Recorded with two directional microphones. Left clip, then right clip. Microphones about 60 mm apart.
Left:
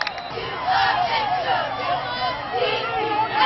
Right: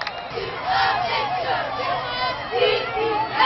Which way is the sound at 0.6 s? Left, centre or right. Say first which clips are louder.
Left 1 dB; centre.